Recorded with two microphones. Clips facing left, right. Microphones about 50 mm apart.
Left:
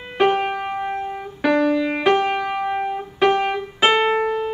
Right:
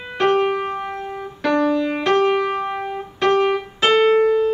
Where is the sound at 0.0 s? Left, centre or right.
Centre.